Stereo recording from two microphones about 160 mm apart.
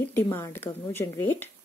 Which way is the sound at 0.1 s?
15° left (ahead or behind).